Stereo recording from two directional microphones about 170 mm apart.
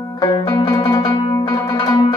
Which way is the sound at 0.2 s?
20° left (ahead or behind).